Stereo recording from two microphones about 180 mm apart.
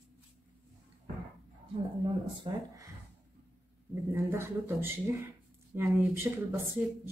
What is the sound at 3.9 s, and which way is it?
Speech, 15° right (ahead or behind).